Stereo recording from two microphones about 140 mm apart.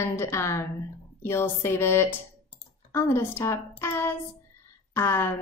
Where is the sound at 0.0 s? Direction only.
20° left (ahead or behind).